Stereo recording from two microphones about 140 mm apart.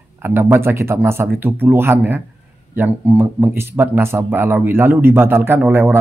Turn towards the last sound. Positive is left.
turn(degrees=-15)  # may be behind; listen again after turning